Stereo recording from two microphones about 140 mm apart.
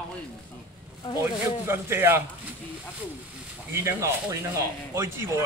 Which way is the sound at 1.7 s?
15° right (ahead or behind).